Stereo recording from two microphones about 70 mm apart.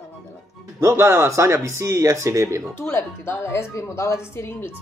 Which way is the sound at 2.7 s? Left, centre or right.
Left.